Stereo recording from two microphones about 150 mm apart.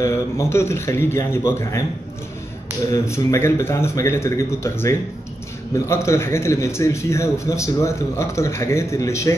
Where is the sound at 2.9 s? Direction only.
20° left (ahead or behind).